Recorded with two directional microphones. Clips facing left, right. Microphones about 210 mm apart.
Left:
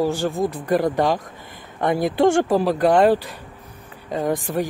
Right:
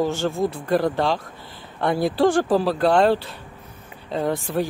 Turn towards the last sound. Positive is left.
turn(degrees=15)  # may be behind; listen again after turning